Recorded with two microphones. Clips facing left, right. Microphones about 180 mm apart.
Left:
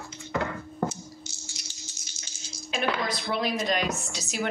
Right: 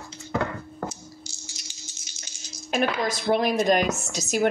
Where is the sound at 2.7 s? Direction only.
45° right (ahead or behind).